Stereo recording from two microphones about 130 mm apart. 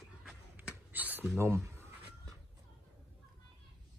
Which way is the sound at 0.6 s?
15° right (ahead or behind).